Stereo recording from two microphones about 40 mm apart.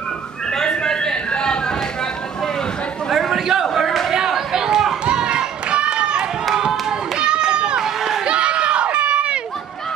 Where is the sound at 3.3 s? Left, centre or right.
Centre.